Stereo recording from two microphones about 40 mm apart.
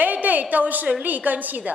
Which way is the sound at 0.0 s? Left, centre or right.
Right.